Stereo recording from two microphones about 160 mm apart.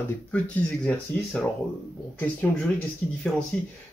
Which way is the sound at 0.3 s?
5° left (ahead or behind).